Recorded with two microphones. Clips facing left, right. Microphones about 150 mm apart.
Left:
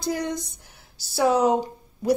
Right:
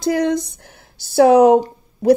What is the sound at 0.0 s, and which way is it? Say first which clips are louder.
Speech: right 9 dB; 90° right.